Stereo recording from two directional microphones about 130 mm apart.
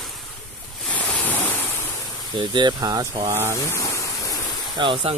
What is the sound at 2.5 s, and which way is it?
Speech, 30° right (ahead or behind).